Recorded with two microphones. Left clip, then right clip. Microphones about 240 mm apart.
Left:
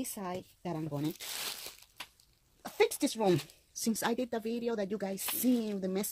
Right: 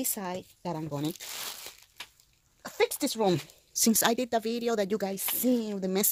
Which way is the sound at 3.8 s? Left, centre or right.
Right.